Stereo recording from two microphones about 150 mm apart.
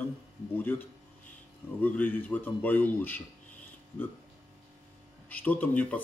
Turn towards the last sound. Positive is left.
turn(degrees=10)  # may be behind; listen again after turning